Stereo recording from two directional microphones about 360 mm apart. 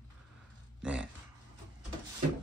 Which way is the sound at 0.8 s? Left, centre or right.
Centre.